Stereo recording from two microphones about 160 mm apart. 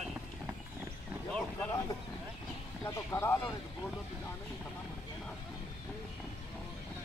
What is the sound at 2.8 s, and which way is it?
Speech, 15° left (ahead or behind).